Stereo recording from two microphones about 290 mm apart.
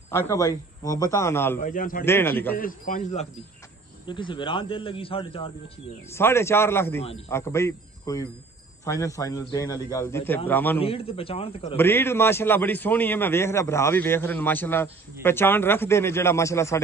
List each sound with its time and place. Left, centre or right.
0.1 s a man's voice: centre
1.6 s a man's voice: left
2.0 s a man's voice: centre
2.5 s a man's voice: left; by 10.8 s centre
10.8 s a man's voice: centre
11.7 s a man's voice: centre